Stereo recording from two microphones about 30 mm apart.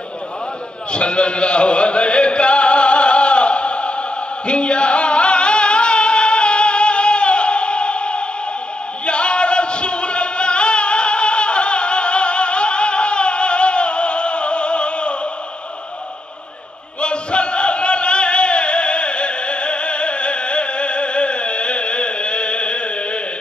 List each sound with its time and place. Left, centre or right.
0.9 s music: left
9.0 s a sound: left
17.0 s chant: left